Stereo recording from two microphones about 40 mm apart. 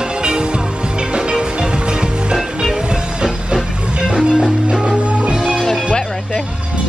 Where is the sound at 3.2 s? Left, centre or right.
Centre.